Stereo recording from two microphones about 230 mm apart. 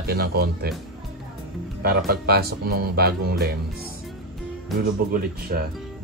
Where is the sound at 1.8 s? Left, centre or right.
Right.